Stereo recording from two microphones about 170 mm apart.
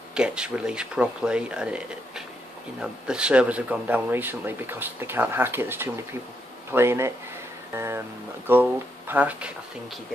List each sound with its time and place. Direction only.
0.1 s speech: 5° right (ahead or behind)